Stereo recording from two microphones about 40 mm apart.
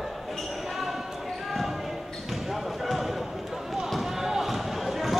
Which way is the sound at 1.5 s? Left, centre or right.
Centre.